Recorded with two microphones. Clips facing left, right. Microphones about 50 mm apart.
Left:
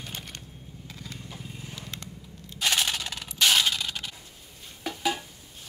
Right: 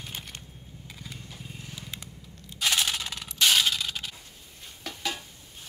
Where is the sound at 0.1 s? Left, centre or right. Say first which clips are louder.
Left 1 dB; centre.